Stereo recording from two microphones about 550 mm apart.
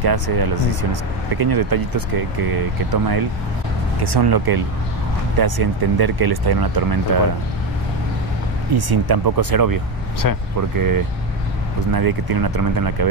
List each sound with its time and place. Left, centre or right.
0.0 s speech: right
8.7 s speech: right
10.2 s speech: left
10.8 s speech: right